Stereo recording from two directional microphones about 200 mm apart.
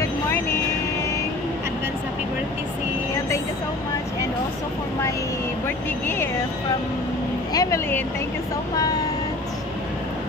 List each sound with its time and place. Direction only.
7.5 s speech: 15° left (ahead or behind)